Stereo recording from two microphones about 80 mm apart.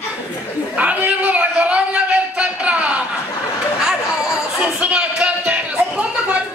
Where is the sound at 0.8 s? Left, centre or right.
Centre.